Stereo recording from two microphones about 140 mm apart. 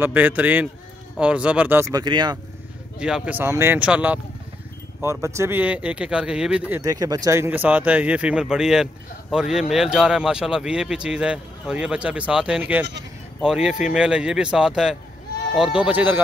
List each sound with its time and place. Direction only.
0.0 s speech: 15° right (ahead or behind)
2.0 s speech: 30° right (ahead or behind)
3.0 s speech: 5° right (ahead or behind)
5.0 s speech: 20° right (ahead or behind)
6.8 s speech: 25° right (ahead or behind); by 16.2 s 10° right (ahead or behind)